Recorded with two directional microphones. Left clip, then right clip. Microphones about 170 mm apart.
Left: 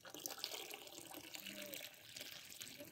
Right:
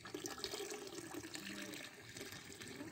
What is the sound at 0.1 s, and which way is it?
Water, 25° left (ahead or behind).